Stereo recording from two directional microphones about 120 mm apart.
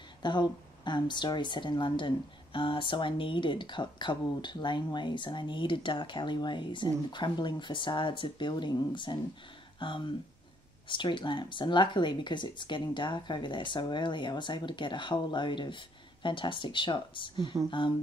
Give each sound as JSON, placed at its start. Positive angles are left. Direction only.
{"t": 0.2, "sound": "speech", "side_deg": 40}